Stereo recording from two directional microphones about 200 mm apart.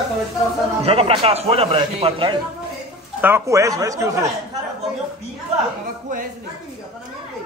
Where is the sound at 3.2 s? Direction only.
15° right (ahead or behind).